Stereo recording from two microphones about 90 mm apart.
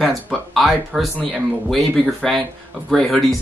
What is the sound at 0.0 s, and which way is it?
Speech, centre (ahead or behind).